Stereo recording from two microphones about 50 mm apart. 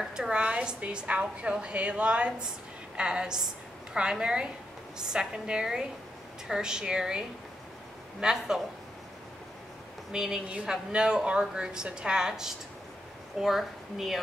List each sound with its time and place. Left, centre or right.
0.0 s a woman's voice: centre
10.1 s a woman's voice: centre